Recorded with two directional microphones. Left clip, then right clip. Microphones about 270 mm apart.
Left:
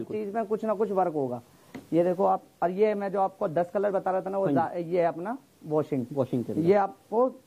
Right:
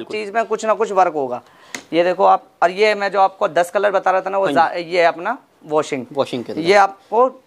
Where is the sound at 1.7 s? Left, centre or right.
Centre.